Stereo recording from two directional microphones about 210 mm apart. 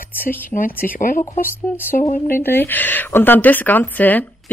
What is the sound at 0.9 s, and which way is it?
Speech, 40° left (ahead or behind).